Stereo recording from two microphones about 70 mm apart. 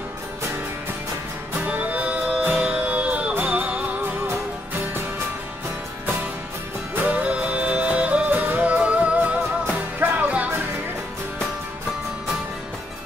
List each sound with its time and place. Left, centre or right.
1.7 s music: right
7.1 s music: centre